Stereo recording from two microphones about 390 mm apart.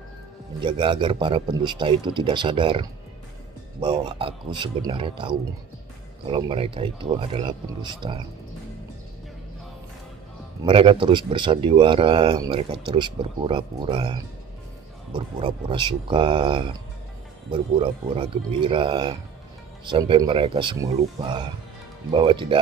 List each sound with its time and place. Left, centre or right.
0.6 s speech: centre
10.6 s speech: centre